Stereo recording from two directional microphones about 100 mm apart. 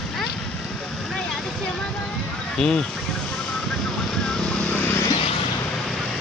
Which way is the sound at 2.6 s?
5° left (ahead or behind).